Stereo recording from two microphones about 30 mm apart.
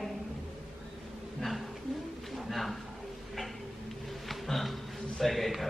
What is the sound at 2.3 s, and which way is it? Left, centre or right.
Bird, centre.